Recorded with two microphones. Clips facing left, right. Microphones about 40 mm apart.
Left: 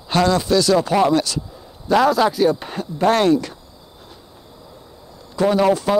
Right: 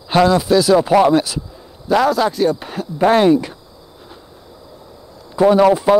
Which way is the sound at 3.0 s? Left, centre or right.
Centre.